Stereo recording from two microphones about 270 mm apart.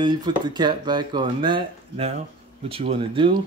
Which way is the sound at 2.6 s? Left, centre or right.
Centre.